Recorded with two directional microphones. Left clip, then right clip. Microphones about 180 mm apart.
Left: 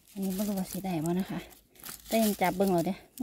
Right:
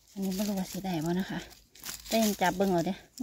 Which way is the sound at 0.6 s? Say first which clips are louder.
Even; 15° left (ahead or behind).